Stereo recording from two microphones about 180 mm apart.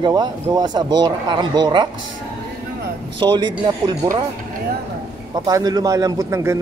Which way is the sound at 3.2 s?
25° right (ahead or behind).